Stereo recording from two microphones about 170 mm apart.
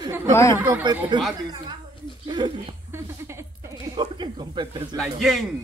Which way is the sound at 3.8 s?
25° right (ahead or behind).